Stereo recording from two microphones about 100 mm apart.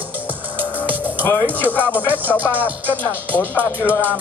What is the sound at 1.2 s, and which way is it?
Speech, 15° left (ahead or behind).